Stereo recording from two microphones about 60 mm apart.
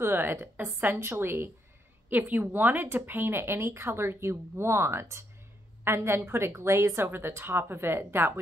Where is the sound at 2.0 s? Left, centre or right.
Right.